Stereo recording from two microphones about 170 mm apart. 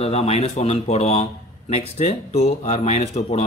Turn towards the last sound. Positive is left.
turn(degrees=40)  # may be behind; listen again after turning